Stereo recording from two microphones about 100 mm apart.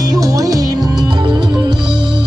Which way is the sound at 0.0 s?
35° right (ahead or behind).